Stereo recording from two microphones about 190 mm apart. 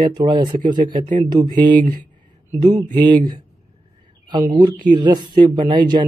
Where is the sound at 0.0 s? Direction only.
25° right (ahead or behind).